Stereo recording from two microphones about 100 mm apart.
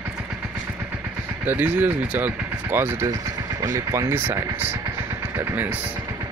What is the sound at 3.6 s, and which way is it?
Speech, 35° right (ahead or behind).